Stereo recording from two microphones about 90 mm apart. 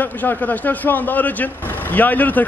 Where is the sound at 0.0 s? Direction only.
20° left (ahead or behind).